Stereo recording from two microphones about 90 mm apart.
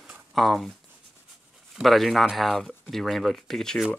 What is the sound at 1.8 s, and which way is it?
Speech, centre (ahead or behind).